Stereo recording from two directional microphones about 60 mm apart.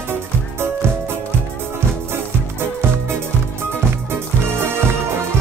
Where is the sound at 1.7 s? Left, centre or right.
Right.